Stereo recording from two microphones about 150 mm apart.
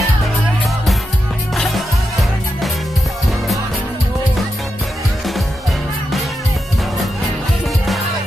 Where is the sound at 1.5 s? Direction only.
Centre (ahead or behind).